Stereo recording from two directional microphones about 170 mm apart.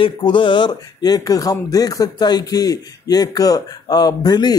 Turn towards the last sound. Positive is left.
turn(degrees=25)  # may be behind; listen again after turning